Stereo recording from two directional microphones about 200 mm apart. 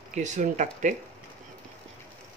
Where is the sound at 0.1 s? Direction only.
35° right (ahead or behind).